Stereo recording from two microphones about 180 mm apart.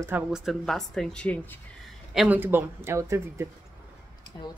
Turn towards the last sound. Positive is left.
turn(degrees=-15)  # may be behind; listen again after turning